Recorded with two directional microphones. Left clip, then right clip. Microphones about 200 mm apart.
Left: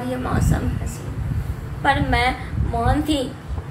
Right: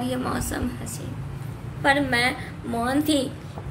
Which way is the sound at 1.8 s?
55° right (ahead or behind).